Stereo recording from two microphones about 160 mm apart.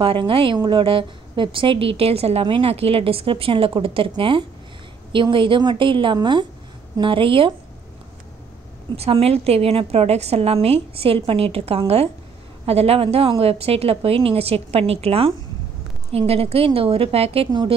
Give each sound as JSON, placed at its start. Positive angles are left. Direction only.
{"t": 0.0, "sound": "a woman's voice", "side_deg": -35}
{"t": 8.9, "sound": "a woman's voice", "side_deg": -40}